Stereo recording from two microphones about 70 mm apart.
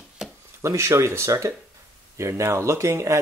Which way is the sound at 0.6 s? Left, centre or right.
Right.